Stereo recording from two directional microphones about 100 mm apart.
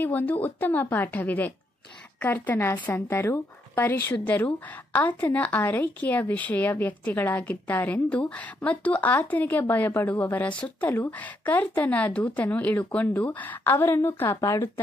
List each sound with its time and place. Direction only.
0.0 s a woman's voice: 20° left (ahead or behind)